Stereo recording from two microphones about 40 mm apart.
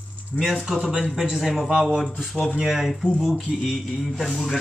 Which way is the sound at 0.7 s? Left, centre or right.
Centre.